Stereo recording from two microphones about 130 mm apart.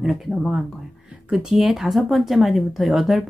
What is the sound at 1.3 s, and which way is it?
Speech, 5° right (ahead or behind).